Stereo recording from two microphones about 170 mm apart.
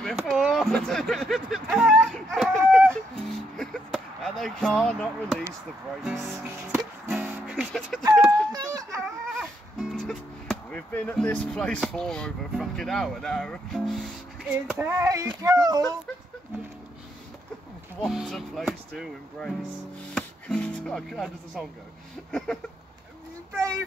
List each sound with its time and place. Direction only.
0.0 s a sound: centre (ahead or behind)
3.9 s speech: centre (ahead or behind)
6.0 s speech: 10° right (ahead or behind)
7.1 s music: 5° right (ahead or behind)
8.5 s a sound: 20° right (ahead or behind)
9.3 s speech: centre (ahead or behind)
14.8 s speech: 15° right (ahead or behind)
18.0 s speech: centre (ahead or behind)
23.5 s speech: 20° right (ahead or behind)